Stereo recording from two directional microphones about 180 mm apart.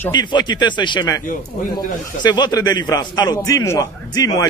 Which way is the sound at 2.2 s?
25° left (ahead or behind).